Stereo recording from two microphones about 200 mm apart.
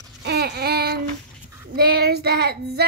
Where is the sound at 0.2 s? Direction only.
55° right (ahead or behind).